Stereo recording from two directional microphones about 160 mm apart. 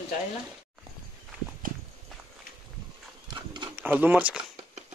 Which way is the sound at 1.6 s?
60° right (ahead or behind).